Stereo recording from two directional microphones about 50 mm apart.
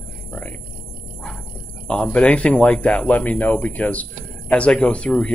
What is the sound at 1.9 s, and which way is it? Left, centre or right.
Speech, centre.